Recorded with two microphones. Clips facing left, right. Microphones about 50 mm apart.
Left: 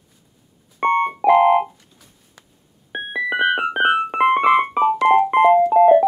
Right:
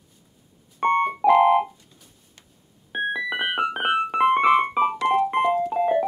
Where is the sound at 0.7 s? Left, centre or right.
Left.